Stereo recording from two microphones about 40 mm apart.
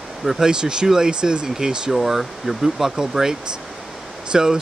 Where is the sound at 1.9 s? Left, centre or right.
Centre.